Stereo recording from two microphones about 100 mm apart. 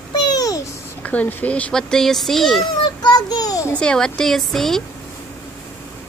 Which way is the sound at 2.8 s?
45° left (ahead or behind).